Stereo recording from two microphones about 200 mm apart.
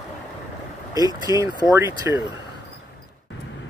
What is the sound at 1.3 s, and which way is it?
Speech, 15° right (ahead or behind).